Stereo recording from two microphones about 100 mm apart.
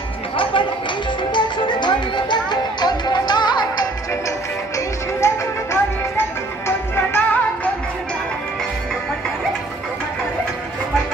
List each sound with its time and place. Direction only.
0.4 s music: 60° left (ahead or behind)
4.7 s music: 30° left (ahead or behind)
7.1 s music: 15° left (ahead or behind)